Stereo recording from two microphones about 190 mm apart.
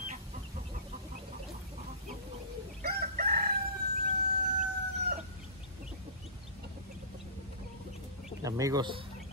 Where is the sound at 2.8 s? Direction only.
50° right (ahead or behind).